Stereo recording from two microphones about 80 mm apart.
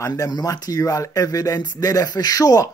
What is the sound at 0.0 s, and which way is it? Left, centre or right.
Speech, left.